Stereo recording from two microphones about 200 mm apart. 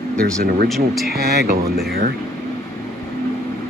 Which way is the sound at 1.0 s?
50° right (ahead or behind).